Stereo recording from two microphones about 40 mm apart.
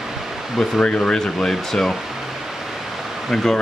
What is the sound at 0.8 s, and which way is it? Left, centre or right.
Speech, left.